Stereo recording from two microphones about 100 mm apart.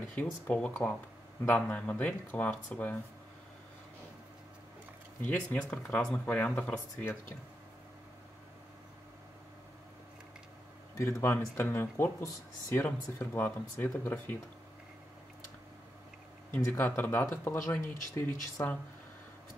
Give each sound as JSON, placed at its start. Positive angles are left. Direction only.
{"t": 0.1, "sound": "speech", "side_deg": 15}
{"t": 5.2, "sound": "speech", "side_deg": 15}
{"t": 11.0, "sound": "speech", "side_deg": 25}
{"t": 12.8, "sound": "speech", "side_deg": 20}
{"t": 16.5, "sound": "speech", "side_deg": 20}